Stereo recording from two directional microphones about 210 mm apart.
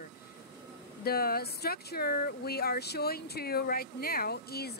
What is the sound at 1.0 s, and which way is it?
Speech, 45° left (ahead or behind).